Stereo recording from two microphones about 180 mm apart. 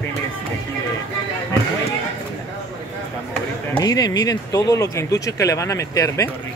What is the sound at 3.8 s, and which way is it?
Speech, 20° left (ahead or behind).